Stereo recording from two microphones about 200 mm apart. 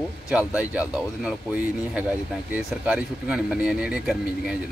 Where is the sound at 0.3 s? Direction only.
5° right (ahead or behind).